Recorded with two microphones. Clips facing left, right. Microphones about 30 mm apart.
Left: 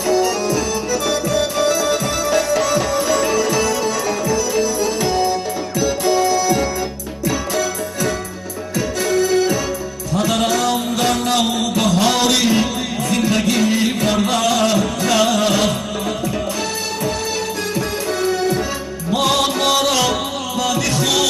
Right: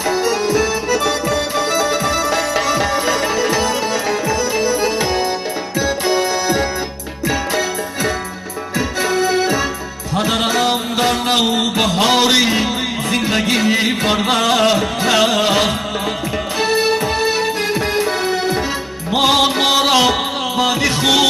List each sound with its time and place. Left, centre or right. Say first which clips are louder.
0.0 s music: even; right
11.2 s a sound: right 2 dB; right
16.5 s music: right 7 dB; right